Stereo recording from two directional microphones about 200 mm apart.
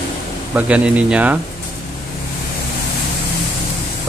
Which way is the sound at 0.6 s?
5° right (ahead or behind).